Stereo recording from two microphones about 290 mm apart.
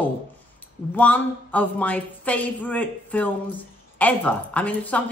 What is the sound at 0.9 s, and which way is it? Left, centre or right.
Speech, centre.